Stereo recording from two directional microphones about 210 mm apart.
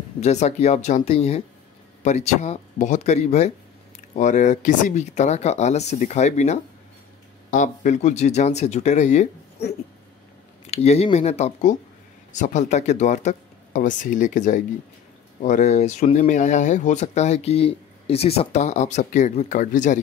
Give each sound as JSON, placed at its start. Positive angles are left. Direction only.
{"t": 0.2, "sound": "speech", "side_deg": 30}
{"t": 10.7, "sound": "speech", "side_deg": 30}